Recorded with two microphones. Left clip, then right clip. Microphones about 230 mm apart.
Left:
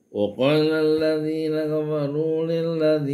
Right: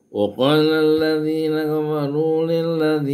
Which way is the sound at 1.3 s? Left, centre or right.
Centre.